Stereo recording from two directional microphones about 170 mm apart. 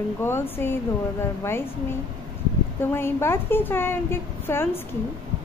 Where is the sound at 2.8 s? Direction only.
15° left (ahead or behind).